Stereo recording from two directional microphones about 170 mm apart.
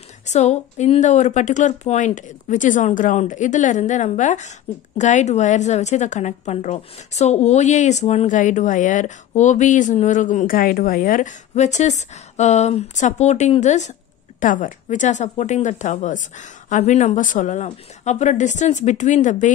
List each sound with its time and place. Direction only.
0.3 s a woman's voice: 40° left (ahead or behind)